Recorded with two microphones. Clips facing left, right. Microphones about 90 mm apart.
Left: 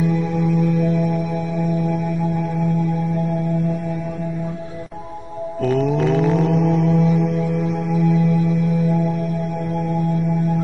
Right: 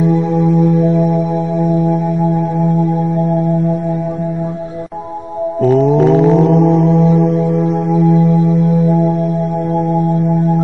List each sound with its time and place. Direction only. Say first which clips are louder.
0.0 s music: right 7 dB; 35° right (ahead or behind)
5.6 s mantra: right 8 dB; 30° right (ahead or behind)